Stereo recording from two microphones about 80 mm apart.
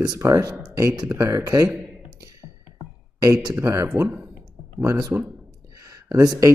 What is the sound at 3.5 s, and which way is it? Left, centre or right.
A man's voice, right.